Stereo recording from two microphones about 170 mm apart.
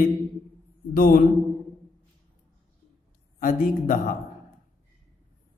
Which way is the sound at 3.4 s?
55° left (ahead or behind).